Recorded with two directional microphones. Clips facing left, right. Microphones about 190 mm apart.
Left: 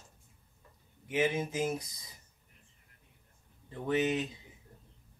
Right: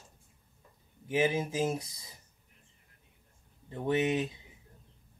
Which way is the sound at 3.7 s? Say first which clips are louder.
Right 1 dB; 30° right (ahead or behind).